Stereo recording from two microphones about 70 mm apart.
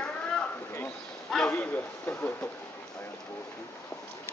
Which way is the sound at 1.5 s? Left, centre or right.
Left.